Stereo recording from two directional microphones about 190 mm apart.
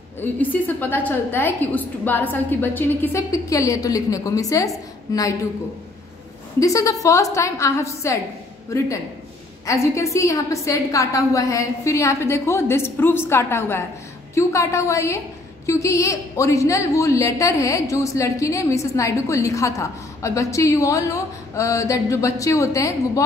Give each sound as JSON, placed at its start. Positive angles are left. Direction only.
{"t": 0.2, "sound": "a woman's voice", "side_deg": 10}
{"t": 6.6, "sound": "a woman's voice", "side_deg": 15}
{"t": 9.7, "sound": "a woman's voice", "side_deg": 15}